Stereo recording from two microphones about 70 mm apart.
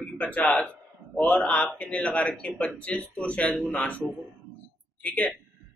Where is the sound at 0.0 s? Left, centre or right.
Centre.